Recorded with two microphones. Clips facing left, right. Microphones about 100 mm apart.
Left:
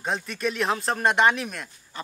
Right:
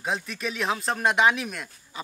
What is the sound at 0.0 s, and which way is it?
Speech, centre (ahead or behind).